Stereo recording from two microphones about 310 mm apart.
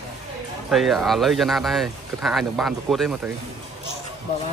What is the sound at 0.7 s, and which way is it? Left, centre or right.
Speech, centre.